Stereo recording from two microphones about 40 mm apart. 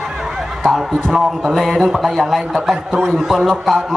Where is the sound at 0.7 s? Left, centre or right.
Centre.